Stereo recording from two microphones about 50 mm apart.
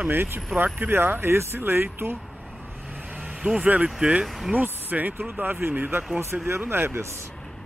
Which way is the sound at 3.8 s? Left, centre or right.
Centre.